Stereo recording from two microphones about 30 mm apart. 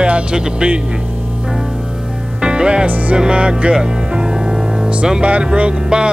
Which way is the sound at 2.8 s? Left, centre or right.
Right.